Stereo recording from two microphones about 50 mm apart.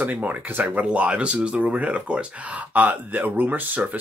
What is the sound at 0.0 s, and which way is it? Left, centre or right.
Speech, right.